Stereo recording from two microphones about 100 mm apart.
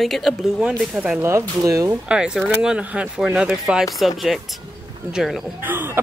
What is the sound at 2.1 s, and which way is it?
Speech, 10° right (ahead or behind).